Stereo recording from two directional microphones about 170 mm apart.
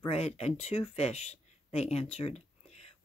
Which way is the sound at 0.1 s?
40° left (ahead or behind).